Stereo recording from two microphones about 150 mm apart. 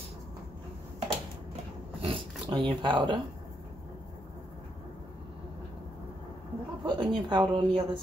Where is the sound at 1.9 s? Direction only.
35° right (ahead or behind).